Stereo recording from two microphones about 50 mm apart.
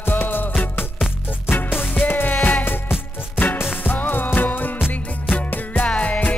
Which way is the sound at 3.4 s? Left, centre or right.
Left.